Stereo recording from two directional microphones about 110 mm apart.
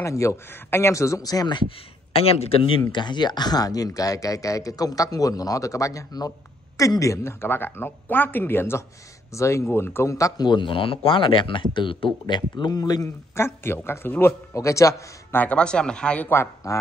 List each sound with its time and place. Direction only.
0.0 s speech: 25° left (ahead or behind)
2.1 s a man's voice: 65° left (ahead or behind)
2.9 s speech: 45° left (ahead or behind)
15.3 s speech: 10° left (ahead or behind)